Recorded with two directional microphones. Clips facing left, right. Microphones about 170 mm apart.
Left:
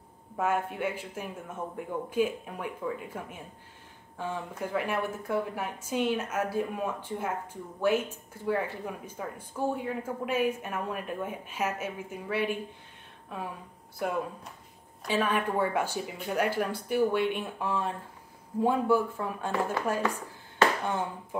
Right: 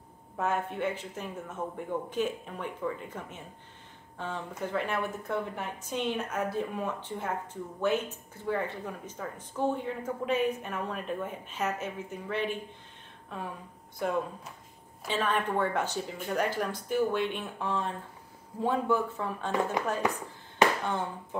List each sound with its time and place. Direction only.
0.4 s speech: 10° left (ahead or behind)
13.9 s speech: 5° left (ahead or behind)
19.8 s speech: 15° right (ahead or behind)
20.8 s speech: 10° left (ahead or behind)